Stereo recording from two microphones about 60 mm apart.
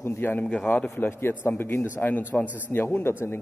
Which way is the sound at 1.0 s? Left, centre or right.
Left.